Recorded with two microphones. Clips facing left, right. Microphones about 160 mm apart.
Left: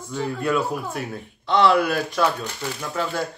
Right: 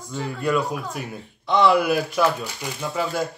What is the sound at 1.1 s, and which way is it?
Speech, 15° right (ahead or behind).